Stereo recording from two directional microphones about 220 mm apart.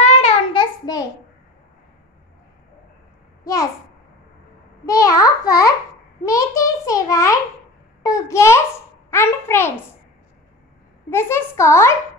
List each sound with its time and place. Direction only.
0.0 s child singing: 30° left (ahead or behind)
4.8 s a child's voice: 15° left (ahead or behind)
11.1 s a child's voice: 10° left (ahead or behind)